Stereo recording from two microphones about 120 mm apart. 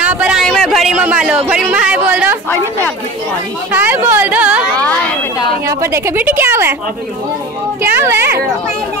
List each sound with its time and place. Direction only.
0.0 s a sound: 10° right (ahead or behind)
0.4 s a sound: 5° left (ahead or behind)
1.5 s speech: 10° right (ahead or behind)
3.7 s speech: 15° right (ahead or behind)
4.7 s speech: 10° left (ahead or behind)
5.7 s a woman's voice: 25° right (ahead or behind)
7.8 s speech: 20° right (ahead or behind)